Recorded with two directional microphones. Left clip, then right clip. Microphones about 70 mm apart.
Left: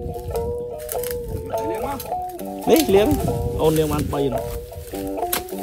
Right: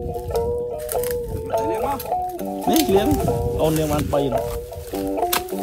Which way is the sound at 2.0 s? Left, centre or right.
Centre.